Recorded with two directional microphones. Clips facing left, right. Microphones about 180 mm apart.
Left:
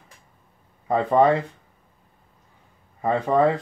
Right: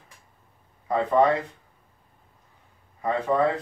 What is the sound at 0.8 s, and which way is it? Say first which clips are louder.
Speech: left 3 dB; 30° left (ahead or behind).